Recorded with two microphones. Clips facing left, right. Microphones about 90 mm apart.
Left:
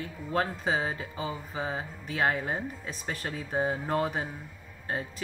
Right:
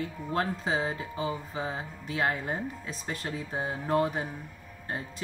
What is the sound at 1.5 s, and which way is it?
Speech, 35° left (ahead or behind).